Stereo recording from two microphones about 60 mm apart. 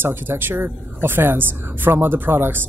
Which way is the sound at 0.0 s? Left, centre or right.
Right.